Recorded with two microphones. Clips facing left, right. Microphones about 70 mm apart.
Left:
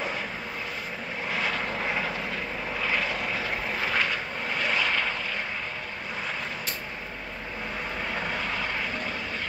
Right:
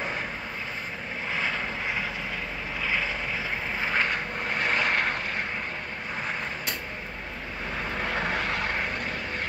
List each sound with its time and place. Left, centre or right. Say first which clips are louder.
2.8 s vehicle: even; centre
4.1 s vehicle: right 1 dB; right
8.1 s vehicle: right 3 dB; right